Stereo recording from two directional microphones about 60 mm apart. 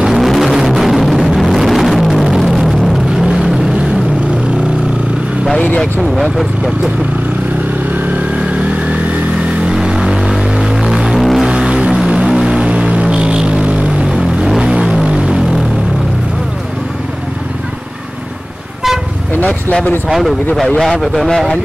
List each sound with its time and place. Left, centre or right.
0.0 s vehicle: centre
5.8 s speech: centre
9.7 s vehicle: centre
11.4 s vehicle: centre
14.6 s music: centre
19.4 s vehicle: left
20.1 s speech: centre